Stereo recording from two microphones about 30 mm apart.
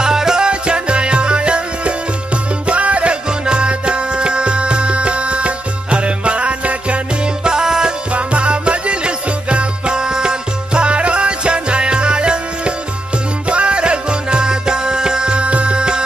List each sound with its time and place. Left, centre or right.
0.0 s music: right
0.5 s music: right
2.6 s music: right
3.3 s music: right
7.4 s music: right
8.1 s music: right
9.9 s music: right
15.3 s music: right